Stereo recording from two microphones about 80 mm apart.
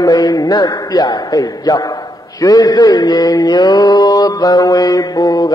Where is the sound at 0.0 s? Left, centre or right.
Left.